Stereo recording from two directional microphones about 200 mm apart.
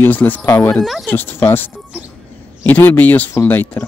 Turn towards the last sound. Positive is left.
turn(degrees=10)  # may be behind; listen again after turning